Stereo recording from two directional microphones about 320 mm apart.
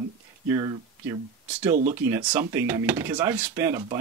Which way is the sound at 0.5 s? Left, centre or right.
Centre.